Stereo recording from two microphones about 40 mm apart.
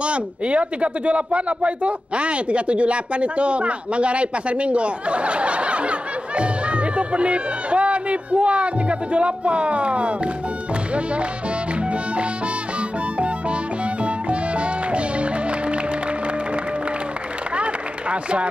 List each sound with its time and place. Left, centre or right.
0.0 s speech: right
14.0 s music: right